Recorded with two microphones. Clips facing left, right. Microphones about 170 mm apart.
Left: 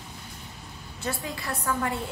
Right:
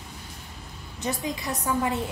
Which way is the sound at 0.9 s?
20° right (ahead or behind).